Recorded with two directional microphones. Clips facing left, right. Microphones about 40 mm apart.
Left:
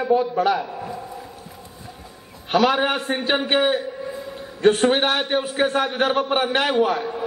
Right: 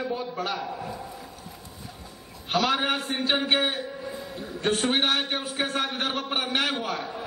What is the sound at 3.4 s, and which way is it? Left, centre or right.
Speech, centre.